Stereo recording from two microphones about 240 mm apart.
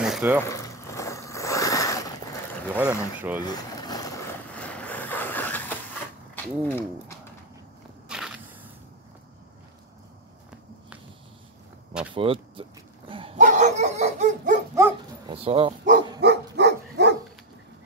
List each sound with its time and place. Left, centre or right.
0.0 s a sound: centre
0.4 s zipper: centre
2.7 s speech: centre
3.4 s boat: centre
4.6 s vehicle: centre
6.3 s speech: centre
8.1 s walk: centre
12.1 s speech: right
13.1 s dog: right
14.8 s dog: centre
15.3 s speech: right
16.2 s dog: right